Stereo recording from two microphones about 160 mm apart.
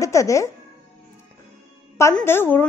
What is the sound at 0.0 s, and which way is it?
Speech, 20° left (ahead or behind).